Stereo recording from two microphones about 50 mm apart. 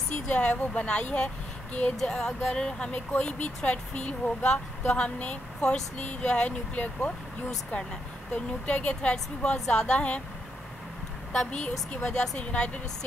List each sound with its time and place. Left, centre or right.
0.3 s speech: left
2.0 s speech: centre
12.1 s speech: left